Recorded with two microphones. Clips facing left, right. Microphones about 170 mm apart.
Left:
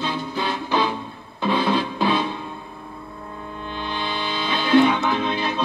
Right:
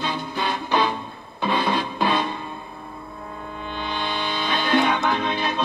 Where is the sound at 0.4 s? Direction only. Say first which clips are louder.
Even; 15° right (ahead or behind).